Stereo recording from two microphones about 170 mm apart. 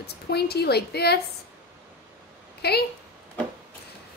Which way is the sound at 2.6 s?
70° left (ahead or behind).